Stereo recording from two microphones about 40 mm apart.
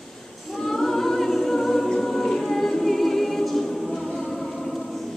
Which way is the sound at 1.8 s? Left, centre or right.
Centre.